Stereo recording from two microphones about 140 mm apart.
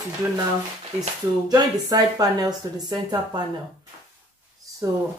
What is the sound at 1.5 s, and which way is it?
A woman's voice, 25° right (ahead or behind).